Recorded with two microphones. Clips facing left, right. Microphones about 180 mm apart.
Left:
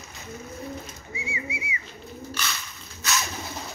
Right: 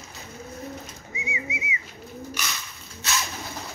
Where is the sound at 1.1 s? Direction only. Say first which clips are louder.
Even; 20° right (ahead or behind).